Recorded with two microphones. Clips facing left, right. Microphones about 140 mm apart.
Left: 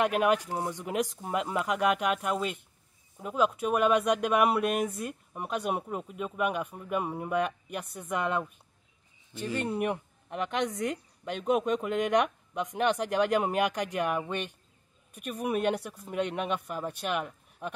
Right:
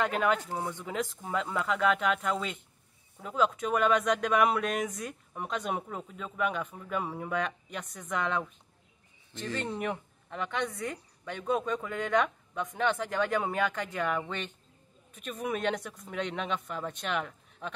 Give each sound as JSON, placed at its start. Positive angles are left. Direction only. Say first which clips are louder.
{"t": 0.2, "sound": "a woman's voice", "louder": "left 2 dB", "side_deg": 10}